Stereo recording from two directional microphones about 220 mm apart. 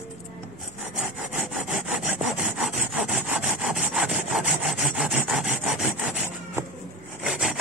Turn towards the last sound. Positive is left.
turn(degrees=0)  # may be behind; listen again after turning